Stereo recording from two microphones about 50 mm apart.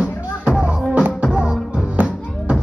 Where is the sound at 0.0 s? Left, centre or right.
Centre.